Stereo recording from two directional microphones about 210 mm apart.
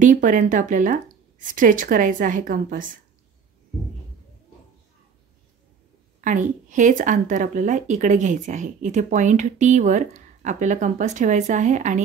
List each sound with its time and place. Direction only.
0.0 s speech: 40° right (ahead or behind)
6.2 s speech: 35° right (ahead or behind)